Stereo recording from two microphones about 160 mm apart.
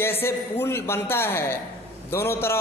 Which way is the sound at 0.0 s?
15° left (ahead or behind).